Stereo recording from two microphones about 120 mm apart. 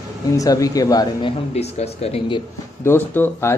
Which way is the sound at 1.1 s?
50° left (ahead or behind).